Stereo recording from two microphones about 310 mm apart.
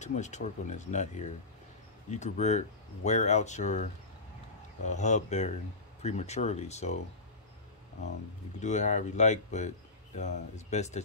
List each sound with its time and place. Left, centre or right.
0.0 s speech: left
8.0 s speech: left